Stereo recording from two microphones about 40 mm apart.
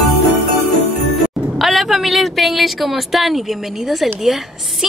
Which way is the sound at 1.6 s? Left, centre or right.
Centre.